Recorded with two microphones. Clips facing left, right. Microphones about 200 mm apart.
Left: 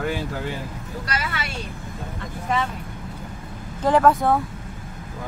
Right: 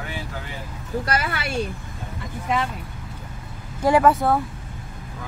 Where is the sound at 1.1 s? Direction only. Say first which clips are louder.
Right 2 dB; 55° right (ahead or behind).